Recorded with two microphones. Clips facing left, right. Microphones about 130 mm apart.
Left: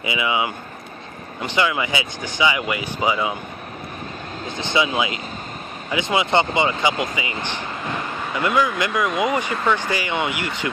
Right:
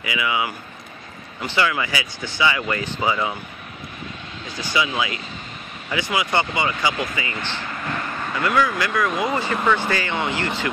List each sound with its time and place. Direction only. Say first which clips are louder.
0.0 s speech: left 2 dB; 25° left (ahead or behind)
4.6 s speech: left 2 dB; 25° left (ahead or behind)